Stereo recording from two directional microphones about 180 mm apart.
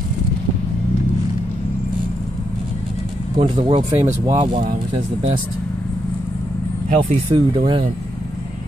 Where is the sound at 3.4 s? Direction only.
30° right (ahead or behind).